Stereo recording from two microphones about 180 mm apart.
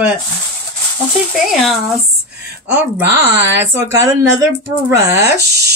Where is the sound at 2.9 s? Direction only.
10° right (ahead or behind).